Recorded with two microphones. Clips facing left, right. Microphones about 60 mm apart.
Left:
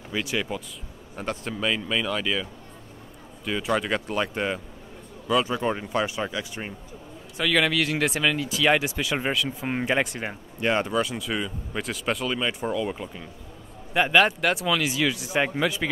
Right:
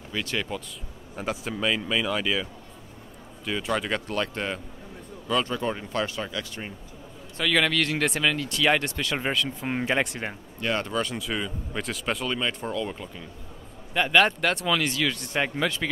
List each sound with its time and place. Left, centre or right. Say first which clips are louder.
0.1 s speech: left 2 dB; centre
1.1 s speech: even; centre
3.4 s speech: left 2 dB; centre
7.3 s speech: left 1 dB; centre
10.6 s speech: left 4 dB; left
10.9 s speech: left 2 dB; centre